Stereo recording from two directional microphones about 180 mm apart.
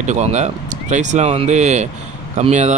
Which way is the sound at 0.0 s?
40° right (ahead or behind).